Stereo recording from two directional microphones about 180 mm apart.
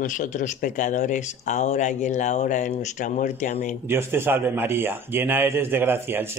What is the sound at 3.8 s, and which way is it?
A man's voice, 15° right (ahead or behind).